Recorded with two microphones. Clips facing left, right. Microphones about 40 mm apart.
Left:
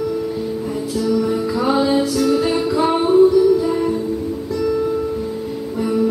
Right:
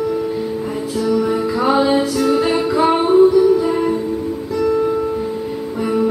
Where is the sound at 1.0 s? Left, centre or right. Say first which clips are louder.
Right 2 dB; centre.